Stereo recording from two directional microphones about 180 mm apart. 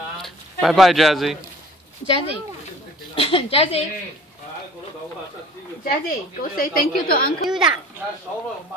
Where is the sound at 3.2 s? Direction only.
30° left (ahead or behind).